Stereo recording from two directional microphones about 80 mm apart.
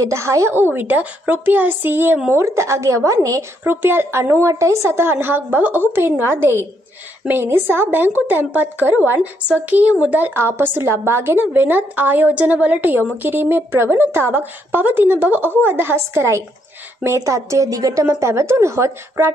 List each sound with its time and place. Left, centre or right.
0.0 s a woman's voice: right
0.6 s a woman's voice: right
2.3 s a woman's voice: right
3.6 s a woman's voice: right
18.0 s a woman's voice: right